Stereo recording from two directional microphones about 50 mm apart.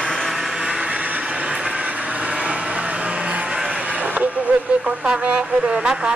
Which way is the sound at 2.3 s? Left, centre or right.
Right.